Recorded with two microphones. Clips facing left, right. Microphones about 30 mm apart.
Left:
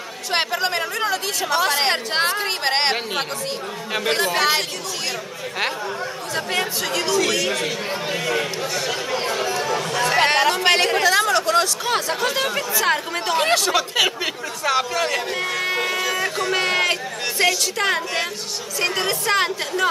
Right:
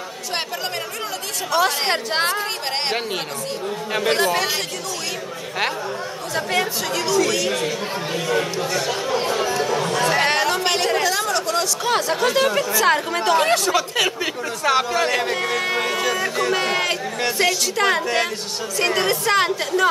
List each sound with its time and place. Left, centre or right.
0.3 s speech: left
1.5 s speech: centre
2.6 s speech: left
3.9 s speech: centre
4.4 s speech: left
6.3 s speech: centre
10.1 s chatter: centre
10.5 s speech: centre
11.8 s speech: centre
13.5 s speech: centre
14.6 s speech: centre